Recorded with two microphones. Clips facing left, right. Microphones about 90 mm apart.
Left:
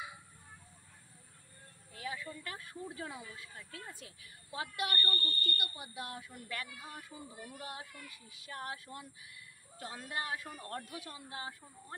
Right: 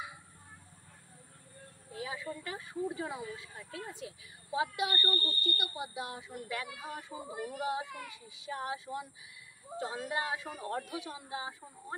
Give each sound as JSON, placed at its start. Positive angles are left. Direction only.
{"t": 1.9, "sound": "speech", "side_deg": -20}
{"t": 7.2, "sound": "speech", "side_deg": -75}
{"t": 7.6, "sound": "speech", "side_deg": -20}